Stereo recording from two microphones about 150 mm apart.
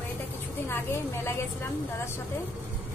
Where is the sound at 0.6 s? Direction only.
20° left (ahead or behind).